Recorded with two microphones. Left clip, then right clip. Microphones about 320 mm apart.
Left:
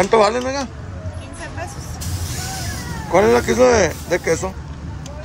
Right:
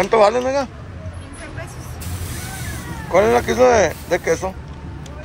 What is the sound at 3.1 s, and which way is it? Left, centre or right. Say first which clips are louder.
Speech: left 1 dB; centre.